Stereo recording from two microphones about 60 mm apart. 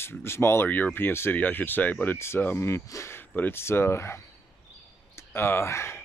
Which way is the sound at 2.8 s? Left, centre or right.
Left.